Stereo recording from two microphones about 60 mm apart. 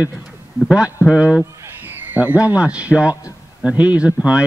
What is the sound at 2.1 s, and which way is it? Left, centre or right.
Speech, right.